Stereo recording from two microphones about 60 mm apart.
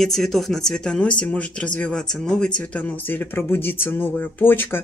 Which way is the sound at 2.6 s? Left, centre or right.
Left.